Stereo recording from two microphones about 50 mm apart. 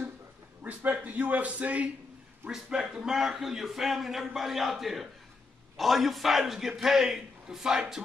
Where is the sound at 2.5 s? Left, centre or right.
Centre.